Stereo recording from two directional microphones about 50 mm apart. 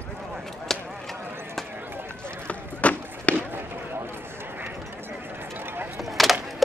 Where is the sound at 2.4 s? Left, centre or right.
Left.